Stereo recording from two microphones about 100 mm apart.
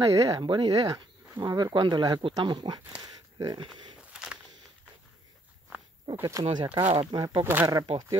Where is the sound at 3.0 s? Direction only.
40° right (ahead or behind).